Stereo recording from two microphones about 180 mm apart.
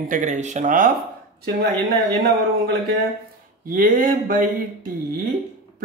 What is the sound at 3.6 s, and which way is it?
Speech, 50° right (ahead or behind).